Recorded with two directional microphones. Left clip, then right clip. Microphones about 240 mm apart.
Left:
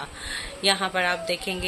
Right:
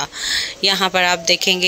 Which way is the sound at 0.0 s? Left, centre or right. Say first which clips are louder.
Right 12 dB; right.